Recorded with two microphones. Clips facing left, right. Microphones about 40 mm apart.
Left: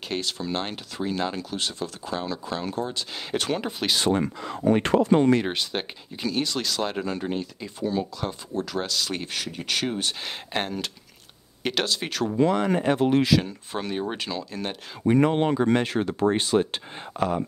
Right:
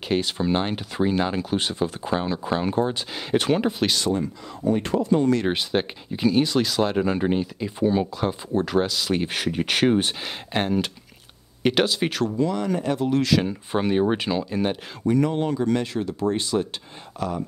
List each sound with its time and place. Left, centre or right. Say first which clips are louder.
0.1 s speech: right 6 dB; centre
3.2 s speech: right 6 dB; centre
4.1 s speech: left 1 dB; left
5.5 s speech: right 5 dB; centre; by 8.8 s right
8.8 s speech: right 5 dB; centre
9.3 s speech: right 5 dB; right
10.2 s speech: right 3 dB; centre
12.4 s speech: left 6 dB; left
13.4 s speech: right 6 dB; centre
15.0 s speech: left 1 dB; left
16.3 s speech: left 2 dB; left